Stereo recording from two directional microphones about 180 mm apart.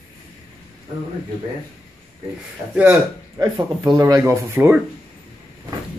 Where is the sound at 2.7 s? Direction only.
10° right (ahead or behind).